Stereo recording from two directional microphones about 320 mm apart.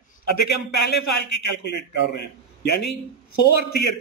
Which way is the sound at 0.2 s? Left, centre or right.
Left.